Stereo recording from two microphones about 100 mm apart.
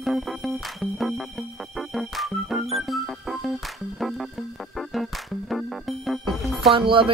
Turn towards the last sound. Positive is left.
turn(degrees=-60)  # may be behind; listen again after turning